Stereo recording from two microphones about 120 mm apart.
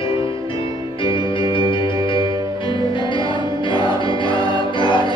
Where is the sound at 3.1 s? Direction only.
45° left (ahead or behind).